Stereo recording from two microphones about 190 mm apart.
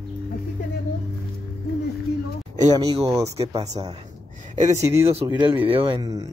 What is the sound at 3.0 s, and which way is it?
Speech, 15° right (ahead or behind).